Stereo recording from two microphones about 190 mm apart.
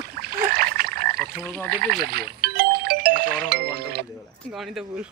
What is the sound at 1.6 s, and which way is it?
Music, 50° right (ahead or behind).